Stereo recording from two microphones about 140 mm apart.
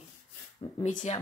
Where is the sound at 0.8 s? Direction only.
55° left (ahead or behind).